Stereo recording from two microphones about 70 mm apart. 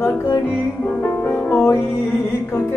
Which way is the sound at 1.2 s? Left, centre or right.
Left.